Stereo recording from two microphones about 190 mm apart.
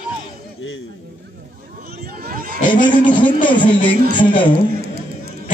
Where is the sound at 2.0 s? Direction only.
50° right (ahead or behind).